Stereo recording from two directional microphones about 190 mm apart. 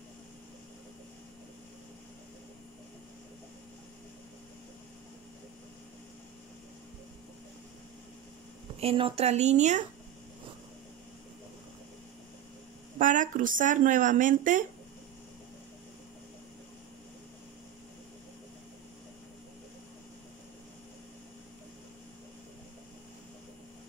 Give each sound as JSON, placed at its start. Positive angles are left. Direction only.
{"t": 8.7, "sound": "a woman's voice", "side_deg": -30}
{"t": 13.0, "sound": "speech", "side_deg": -45}